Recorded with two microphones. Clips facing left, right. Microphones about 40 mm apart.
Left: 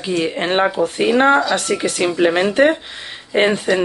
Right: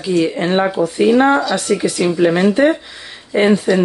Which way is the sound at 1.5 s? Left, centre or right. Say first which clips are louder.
Right 2 dB; left.